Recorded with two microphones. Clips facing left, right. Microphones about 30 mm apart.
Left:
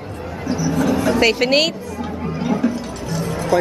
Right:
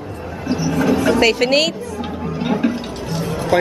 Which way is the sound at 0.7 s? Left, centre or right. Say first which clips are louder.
Right 2 dB; right.